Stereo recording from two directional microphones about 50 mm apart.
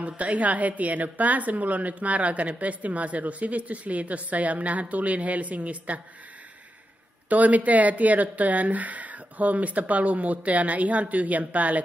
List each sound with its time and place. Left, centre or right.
0.0 s a woman's voice: right
7.2 s speech: right